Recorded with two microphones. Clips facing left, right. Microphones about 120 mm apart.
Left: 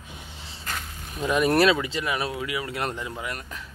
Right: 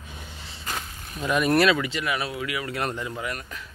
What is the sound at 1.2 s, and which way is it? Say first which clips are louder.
Speech: even; 25° left (ahead or behind).